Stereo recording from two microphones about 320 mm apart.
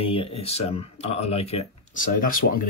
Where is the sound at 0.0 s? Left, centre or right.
Centre.